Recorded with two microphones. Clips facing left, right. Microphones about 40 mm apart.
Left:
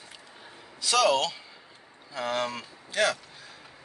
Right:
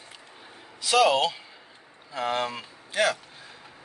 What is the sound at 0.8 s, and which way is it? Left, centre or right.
Speech, centre.